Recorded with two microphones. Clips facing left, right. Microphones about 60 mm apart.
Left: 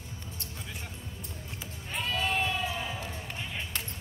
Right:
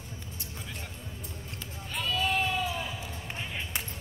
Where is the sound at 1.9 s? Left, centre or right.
Left.